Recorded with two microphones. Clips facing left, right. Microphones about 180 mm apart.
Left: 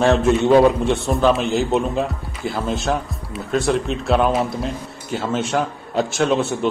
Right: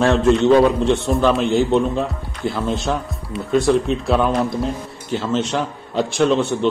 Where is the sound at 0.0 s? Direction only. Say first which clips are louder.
Right 1 dB; 5° left (ahead or behind).